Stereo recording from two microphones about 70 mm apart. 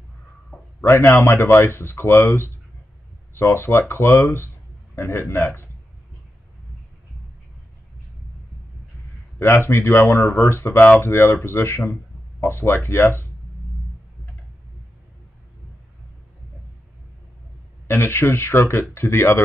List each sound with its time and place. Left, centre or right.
0.5 s a sound: centre
0.8 s a man's voice: left
9.4 s speech: left
17.8 s speech: left